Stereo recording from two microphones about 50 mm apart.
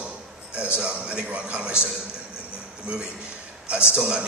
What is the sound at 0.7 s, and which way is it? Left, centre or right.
A woman's voice, centre.